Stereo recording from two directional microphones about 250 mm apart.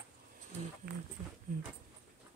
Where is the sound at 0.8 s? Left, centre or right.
Right.